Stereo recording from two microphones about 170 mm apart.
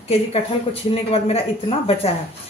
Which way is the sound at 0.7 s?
35° left (ahead or behind).